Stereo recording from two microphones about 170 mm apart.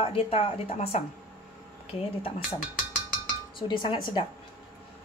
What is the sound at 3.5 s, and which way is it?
Dishes, 25° left (ahead or behind).